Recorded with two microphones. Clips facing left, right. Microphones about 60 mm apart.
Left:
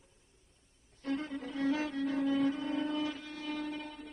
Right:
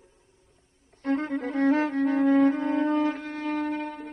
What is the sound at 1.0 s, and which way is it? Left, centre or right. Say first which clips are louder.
Music: right 10 dB; right.